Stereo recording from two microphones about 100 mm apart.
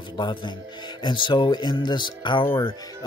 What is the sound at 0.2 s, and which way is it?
Speech, 55° left (ahead or behind).